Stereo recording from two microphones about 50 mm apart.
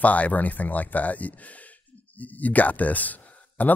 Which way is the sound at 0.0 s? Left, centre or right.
Left.